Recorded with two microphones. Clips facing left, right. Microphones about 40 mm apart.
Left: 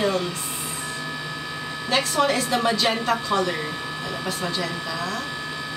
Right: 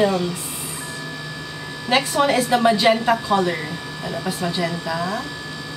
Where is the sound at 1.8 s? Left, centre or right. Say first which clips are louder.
Right 3 dB; right.